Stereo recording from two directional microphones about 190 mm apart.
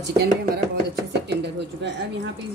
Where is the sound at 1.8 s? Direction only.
65° right (ahead or behind).